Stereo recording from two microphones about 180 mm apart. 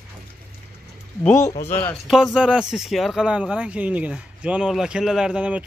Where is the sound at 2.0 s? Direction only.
Centre (ahead or behind).